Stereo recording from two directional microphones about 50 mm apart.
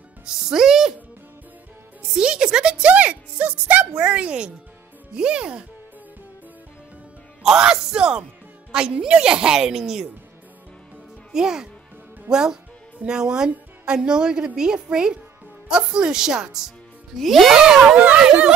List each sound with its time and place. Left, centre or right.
0.3 s a woman's voice: centre
2.1 s speech: centre
7.4 s a woman's voice: centre
11.3 s a woman's voice: centre
17.2 s speech: centre
17.9 s speech: right